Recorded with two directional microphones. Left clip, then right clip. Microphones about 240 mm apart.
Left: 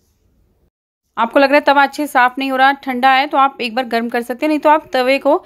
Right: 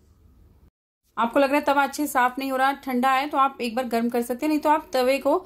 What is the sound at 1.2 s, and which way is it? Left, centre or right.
A woman's voice, left.